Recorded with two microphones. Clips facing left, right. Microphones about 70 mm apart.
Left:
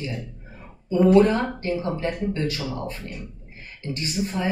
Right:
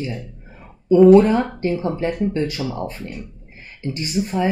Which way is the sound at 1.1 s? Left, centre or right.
Centre.